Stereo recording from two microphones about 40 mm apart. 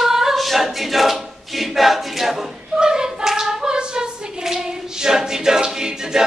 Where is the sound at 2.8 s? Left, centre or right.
Centre.